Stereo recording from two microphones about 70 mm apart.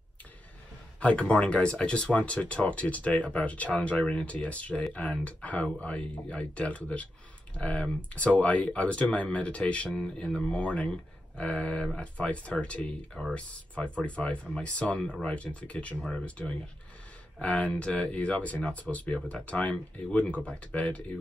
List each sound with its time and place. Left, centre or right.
1.3 s speech: centre